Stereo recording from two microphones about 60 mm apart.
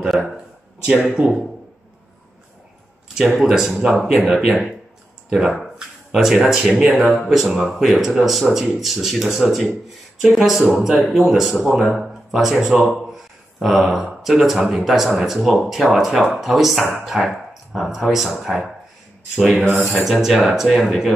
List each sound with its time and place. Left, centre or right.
1.2 s speech: right
3.3 s speech: centre
7.1 s speech: centre
12.8 s a sound: centre
14.2 s speech: centre